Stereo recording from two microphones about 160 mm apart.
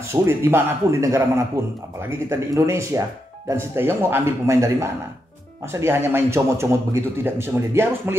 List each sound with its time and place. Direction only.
0.1 s speech: 15° right (ahead or behind)